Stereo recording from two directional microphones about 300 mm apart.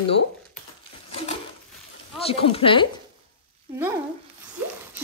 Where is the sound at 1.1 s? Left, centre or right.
Centre.